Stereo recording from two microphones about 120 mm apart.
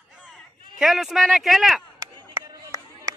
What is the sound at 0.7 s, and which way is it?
Speech, 5° right (ahead or behind).